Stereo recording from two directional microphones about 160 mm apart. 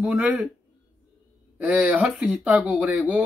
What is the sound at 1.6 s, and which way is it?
Speech, 10° right (ahead or behind).